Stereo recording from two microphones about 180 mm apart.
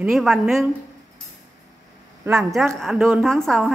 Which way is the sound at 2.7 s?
Centre (ahead or behind).